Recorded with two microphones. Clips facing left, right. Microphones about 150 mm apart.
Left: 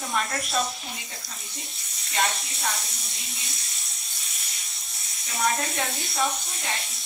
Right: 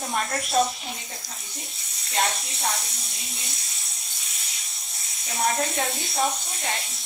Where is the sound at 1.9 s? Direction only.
25° right (ahead or behind).